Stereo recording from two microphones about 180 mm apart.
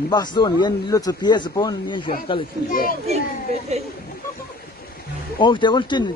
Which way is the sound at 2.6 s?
50° left (ahead or behind).